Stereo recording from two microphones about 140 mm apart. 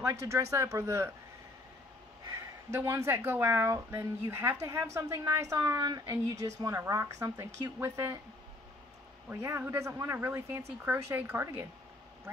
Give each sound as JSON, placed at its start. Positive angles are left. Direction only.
{"t": 0.0, "sound": "a woman's voice", "side_deg": -20}
{"t": 2.7, "sound": "a woman's voice", "side_deg": -20}
{"t": 9.3, "sound": "a woman's voice", "side_deg": -20}